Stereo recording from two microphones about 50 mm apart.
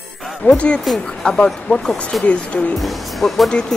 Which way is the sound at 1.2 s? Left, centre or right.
Centre.